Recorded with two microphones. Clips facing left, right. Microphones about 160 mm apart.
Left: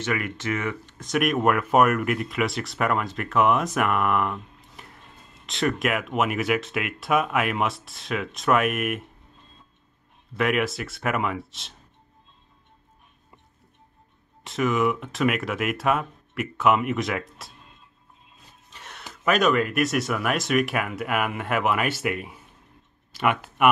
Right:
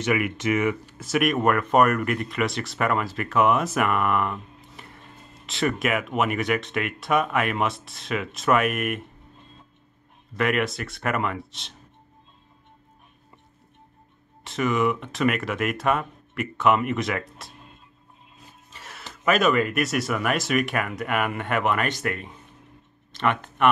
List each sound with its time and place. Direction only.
0.0 s speech: 10° right (ahead or behind)
10.3 s speech: centre (ahead or behind)
14.4 s speech: centre (ahead or behind)
18.7 s a sound: centre (ahead or behind)
19.2 s speech: centre (ahead or behind)